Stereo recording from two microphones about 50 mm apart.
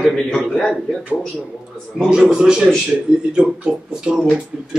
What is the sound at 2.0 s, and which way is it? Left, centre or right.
Speech, centre.